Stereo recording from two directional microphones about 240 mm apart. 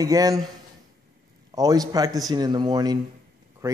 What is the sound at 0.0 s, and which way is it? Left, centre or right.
Speech, centre.